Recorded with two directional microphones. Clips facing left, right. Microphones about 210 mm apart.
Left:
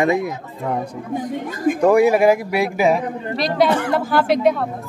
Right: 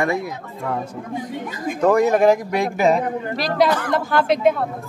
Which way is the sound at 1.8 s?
10° left (ahead or behind).